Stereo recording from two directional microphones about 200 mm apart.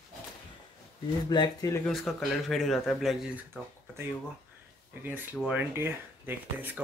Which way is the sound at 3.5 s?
10° right (ahead or behind).